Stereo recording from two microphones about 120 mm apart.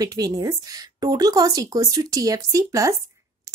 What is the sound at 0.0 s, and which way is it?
A woman's voice, 30° right (ahead or behind).